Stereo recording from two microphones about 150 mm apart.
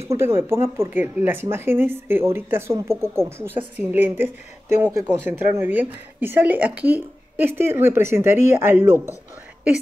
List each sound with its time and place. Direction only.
0.1 s a woman's voice: 15° right (ahead or behind)